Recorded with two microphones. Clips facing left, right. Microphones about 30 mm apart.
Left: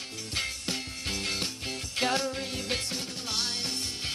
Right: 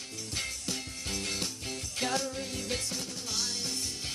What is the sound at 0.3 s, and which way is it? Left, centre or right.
Music, left.